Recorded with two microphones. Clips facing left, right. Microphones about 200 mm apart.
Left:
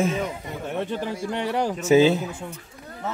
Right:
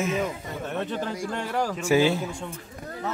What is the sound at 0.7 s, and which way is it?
Speech, 15° left (ahead or behind).